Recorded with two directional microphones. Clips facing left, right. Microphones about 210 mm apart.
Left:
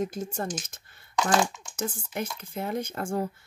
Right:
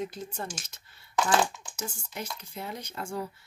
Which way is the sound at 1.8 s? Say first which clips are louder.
Left 6 dB; 55° left (ahead or behind).